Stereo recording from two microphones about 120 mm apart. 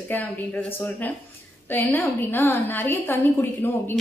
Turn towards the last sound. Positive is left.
turn(degrees=15)  # may be behind; listen again after turning